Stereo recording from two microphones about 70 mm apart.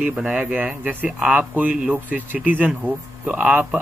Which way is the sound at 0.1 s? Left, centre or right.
Centre.